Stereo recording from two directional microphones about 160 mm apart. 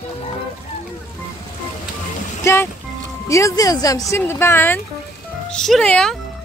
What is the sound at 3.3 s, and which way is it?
Speech, 20° left (ahead or behind).